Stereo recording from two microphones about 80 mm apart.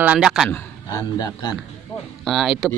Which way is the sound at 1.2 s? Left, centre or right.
Left.